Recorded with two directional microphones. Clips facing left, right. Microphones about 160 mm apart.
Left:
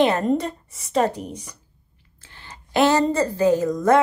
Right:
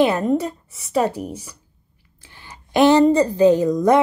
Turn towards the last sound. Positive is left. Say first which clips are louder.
# right 2 dB
turn(degrees=-20)  # may be behind; listen again after turning